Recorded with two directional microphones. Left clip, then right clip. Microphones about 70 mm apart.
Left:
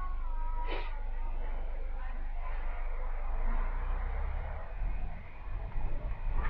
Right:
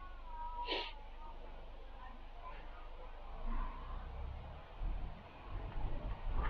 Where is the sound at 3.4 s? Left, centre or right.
Centre.